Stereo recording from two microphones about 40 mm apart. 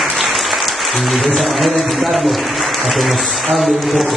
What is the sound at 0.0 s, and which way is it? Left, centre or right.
Speech, centre.